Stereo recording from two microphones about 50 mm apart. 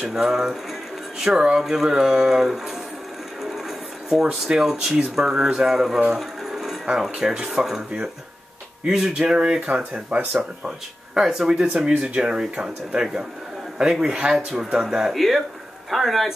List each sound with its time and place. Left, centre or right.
0.1 s speech: centre
1.6 s speech: centre
4.1 s speech: centre
6.1 s music: centre
6.9 s speech: centre
10.1 s speech: right
11.1 s speech: centre
15.1 s a man's voice: centre